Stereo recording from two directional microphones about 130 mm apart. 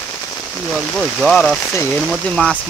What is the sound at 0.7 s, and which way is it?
Speech, centre (ahead or behind).